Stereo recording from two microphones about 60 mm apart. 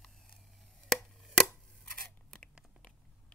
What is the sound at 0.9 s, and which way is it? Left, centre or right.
Chopping, centre.